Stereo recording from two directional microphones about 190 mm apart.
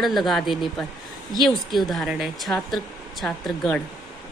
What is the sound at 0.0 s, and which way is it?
Speech, centre (ahead or behind).